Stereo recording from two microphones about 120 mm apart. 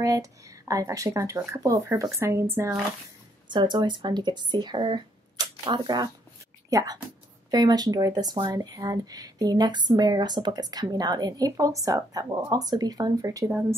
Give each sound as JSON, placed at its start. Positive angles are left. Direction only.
{"t": 0.0, "sound": "speech", "side_deg": -30}
{"t": 3.4, "sound": "speech", "side_deg": -40}
{"t": 13.5, "sound": "speech", "side_deg": -20}